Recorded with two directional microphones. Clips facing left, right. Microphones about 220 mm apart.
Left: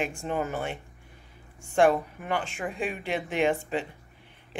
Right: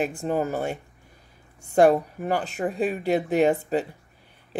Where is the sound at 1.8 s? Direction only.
40° right (ahead or behind).